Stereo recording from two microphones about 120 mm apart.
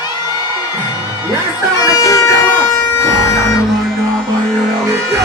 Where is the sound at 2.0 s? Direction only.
25° left (ahead or behind).